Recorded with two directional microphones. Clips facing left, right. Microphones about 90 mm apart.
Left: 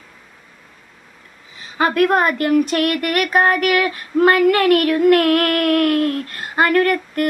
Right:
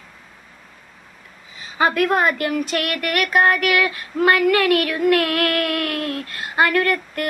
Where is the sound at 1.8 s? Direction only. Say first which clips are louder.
Left 2 dB; 50° left (ahead or behind).